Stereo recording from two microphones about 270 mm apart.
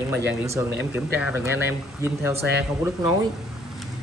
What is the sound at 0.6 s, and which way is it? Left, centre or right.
Speech, centre.